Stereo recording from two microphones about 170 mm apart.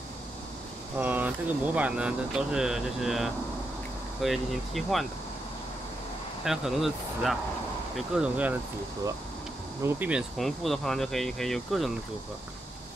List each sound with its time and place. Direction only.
0.9 s speech: 10° right (ahead or behind)
6.4 s speech: centre (ahead or behind)
9.8 s speech: 10° right (ahead or behind)